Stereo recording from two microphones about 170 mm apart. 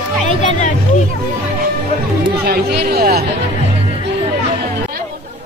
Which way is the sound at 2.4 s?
70° right (ahead or behind).